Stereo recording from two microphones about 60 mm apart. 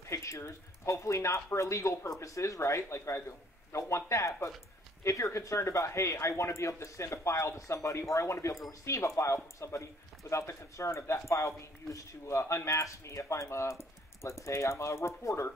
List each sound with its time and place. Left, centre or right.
0.0 s speech: left